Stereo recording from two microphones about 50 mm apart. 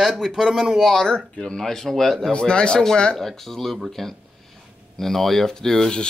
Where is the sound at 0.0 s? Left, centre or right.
Centre.